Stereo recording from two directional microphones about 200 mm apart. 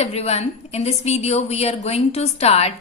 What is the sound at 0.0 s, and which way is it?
A woman's voice, 30° left (ahead or behind).